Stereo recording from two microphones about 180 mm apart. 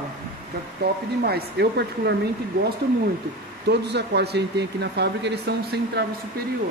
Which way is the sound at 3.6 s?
70° right (ahead or behind).